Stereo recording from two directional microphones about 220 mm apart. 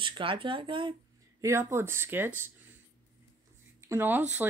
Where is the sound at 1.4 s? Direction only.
10° right (ahead or behind).